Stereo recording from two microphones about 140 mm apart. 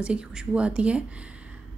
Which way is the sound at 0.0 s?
5° right (ahead or behind).